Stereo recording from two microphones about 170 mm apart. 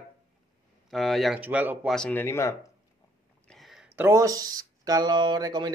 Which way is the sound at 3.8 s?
10° right (ahead or behind).